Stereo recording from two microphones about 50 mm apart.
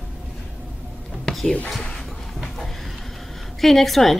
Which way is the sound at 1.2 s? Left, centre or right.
Centre.